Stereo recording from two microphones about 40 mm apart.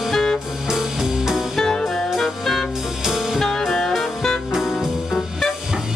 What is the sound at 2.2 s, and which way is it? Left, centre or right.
Music, centre.